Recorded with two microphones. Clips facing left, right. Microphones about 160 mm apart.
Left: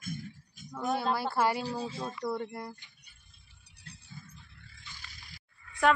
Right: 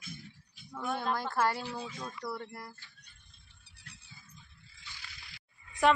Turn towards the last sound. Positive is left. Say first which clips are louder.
# left 2 dB
turn(degrees=-20)  # may be behind; listen again after turning